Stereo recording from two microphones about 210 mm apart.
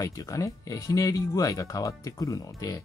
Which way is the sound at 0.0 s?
15° left (ahead or behind).